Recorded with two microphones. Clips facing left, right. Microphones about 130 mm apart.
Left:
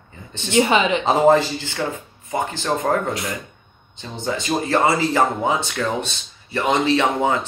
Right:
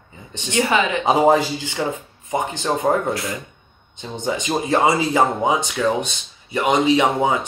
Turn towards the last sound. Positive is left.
turn(degrees=-15)  # may be behind; listen again after turning